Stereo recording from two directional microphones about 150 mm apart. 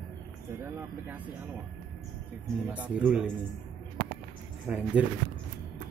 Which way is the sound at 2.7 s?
10° right (ahead or behind).